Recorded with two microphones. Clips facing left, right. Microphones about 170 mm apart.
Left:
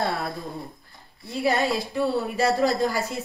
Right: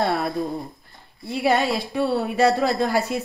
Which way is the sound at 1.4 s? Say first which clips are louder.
Right 2 dB; 65° right (ahead or behind).